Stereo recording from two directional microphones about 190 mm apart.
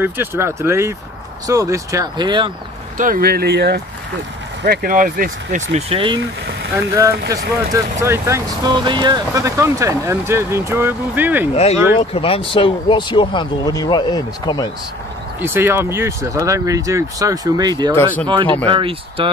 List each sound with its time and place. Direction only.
0.0 s speech: 10° right (ahead or behind)
3.0 s speech: 50° right (ahead or behind)
4.6 s speech: 45° right (ahead or behind); by 6.2 s 25° right (ahead or behind)
6.7 s speech: 15° right (ahead or behind)
11.5 s speech: 35° left (ahead or behind)
15.4 s speech: 10° right (ahead or behind)
17.9 s speech: 10° left (ahead or behind)
18.7 s speech: 30° right (ahead or behind)